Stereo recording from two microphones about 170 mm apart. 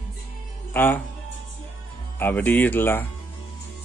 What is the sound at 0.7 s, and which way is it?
Speech, 10° left (ahead or behind).